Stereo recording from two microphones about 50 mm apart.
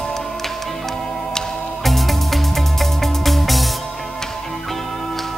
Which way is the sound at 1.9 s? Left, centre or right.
Centre.